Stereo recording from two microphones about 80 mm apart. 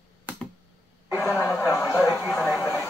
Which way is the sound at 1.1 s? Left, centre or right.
Left.